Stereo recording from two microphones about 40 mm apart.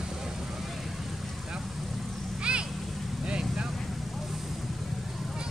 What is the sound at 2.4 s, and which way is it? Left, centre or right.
Vehicle, right.